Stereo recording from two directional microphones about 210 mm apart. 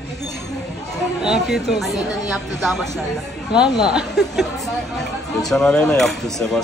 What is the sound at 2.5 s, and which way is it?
Speech, centre (ahead or behind).